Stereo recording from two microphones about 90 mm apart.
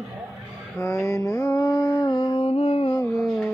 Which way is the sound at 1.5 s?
50° left (ahead or behind).